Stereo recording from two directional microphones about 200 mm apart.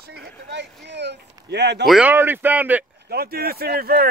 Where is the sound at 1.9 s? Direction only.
5° right (ahead or behind).